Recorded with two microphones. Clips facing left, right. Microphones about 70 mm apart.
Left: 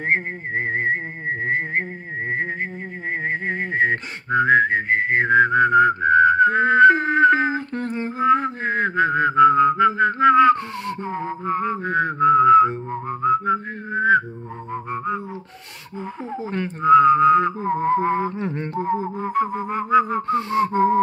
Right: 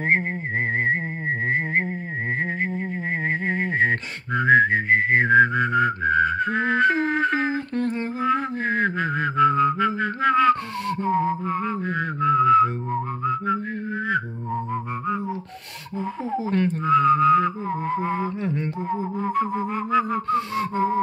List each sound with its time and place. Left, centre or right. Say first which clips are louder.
3.4 s whistling: left 1 dB; centre
16.4 s whistling: left 5 dB; centre; by 18.9 s left
18.9 s music: left 4 dB; left
19.2 s a sound: even; centre
20.1 s gasp: left 2 dB; left